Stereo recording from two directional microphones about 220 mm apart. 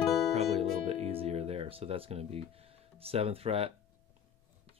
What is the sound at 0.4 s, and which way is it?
Music, 30° right (ahead or behind).